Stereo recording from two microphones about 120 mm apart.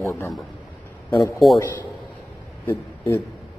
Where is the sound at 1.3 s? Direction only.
Centre (ahead or behind).